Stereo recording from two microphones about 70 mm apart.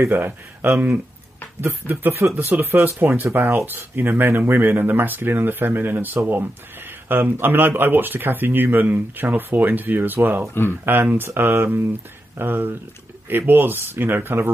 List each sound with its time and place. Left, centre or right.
0.2 s speech: right
1.9 s speech: right
3.6 s speech: right
10.5 s speech: left
10.9 s speech: right